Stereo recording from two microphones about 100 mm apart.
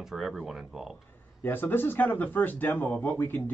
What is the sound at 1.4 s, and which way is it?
Speech, 20° left (ahead or behind).